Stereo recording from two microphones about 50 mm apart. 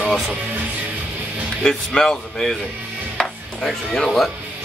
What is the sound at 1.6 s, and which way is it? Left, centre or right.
Speech, centre.